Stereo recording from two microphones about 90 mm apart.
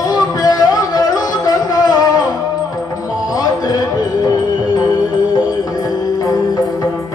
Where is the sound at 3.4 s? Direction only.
45° left (ahead or behind).